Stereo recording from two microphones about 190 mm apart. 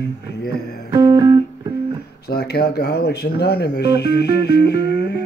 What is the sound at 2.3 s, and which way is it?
Speech, 55° left (ahead or behind).